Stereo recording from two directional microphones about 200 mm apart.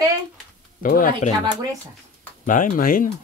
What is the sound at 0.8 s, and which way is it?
Speech, 45° left (ahead or behind).